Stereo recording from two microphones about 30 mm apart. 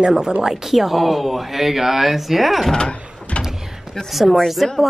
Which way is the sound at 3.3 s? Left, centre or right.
Left.